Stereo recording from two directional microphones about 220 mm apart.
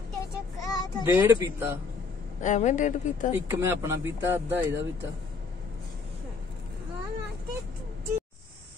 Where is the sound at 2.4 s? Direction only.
35° left (ahead or behind).